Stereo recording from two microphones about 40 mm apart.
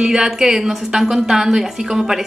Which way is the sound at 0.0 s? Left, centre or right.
Centre.